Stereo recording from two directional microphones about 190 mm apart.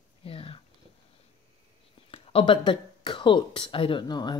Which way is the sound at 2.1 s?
30° left (ahead or behind).